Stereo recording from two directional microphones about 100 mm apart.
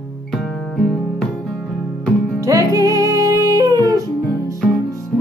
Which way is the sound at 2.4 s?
35° right (ahead or behind).